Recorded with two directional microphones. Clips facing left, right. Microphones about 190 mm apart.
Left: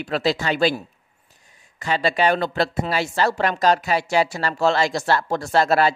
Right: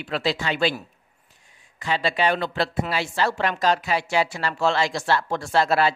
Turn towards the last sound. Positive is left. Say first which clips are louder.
# left 2 dB
turn(degrees=45)  # may be behind; listen again after turning